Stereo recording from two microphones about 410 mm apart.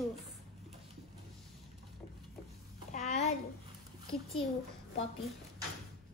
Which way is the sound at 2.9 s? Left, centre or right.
Centre.